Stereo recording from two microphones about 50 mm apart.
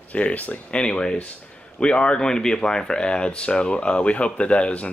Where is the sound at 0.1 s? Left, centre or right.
Left.